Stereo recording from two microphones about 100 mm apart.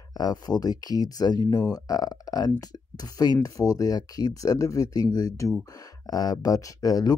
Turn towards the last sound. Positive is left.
turn(degrees=40)  # may be behind; listen again after turning